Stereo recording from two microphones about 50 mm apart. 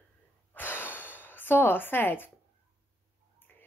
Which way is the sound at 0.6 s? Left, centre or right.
Left.